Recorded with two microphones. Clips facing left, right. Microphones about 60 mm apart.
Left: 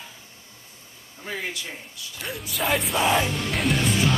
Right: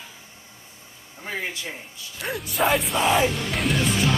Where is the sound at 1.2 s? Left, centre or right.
Right.